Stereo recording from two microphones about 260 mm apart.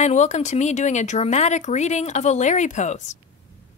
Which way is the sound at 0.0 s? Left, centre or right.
Left.